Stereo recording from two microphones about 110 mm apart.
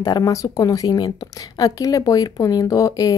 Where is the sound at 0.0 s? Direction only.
30° left (ahead or behind).